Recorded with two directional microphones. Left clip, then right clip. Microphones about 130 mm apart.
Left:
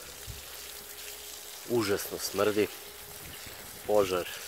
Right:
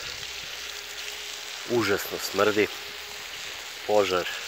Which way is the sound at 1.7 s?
10° left (ahead or behind).